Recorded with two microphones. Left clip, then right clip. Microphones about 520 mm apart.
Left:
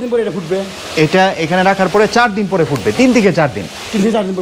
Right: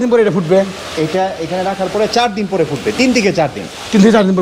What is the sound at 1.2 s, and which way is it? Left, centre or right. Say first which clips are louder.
Speech: left 5 dB; left.